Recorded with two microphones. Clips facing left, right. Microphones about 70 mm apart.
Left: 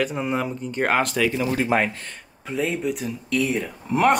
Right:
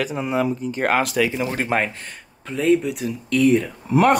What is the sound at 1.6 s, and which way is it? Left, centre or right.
Speech, right.